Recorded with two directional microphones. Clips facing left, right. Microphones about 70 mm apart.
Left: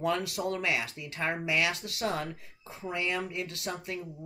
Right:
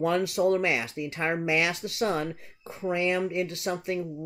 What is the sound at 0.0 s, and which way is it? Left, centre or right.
Speech, right.